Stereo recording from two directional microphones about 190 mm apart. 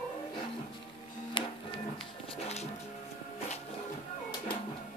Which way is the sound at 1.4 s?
25° left (ahead or behind).